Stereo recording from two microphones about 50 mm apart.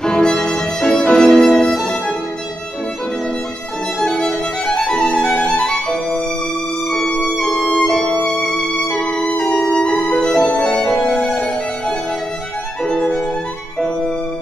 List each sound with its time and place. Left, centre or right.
0.0 s violin: centre
4.0 s music: centre
7.7 s violin: centre
8.9 s music: centre
12.8 s violin: centre